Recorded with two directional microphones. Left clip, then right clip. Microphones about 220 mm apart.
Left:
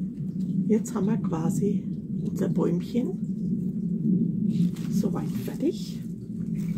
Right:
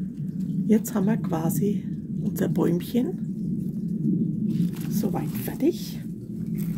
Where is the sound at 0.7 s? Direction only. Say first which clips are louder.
Right 3 dB; 50° right (ahead or behind).